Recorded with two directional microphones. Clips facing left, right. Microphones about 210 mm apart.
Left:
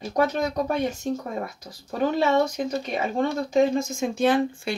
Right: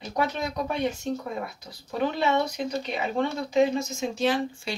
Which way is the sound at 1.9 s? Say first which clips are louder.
Left 3 dB; 45° left (ahead or behind).